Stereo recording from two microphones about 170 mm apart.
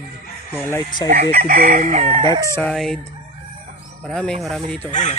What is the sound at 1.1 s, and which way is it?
Chicken, 65° right (ahead or behind).